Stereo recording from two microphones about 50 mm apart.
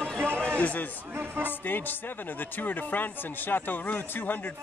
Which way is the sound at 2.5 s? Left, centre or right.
Left.